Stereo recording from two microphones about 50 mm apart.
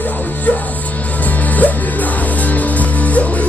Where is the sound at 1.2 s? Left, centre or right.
Left.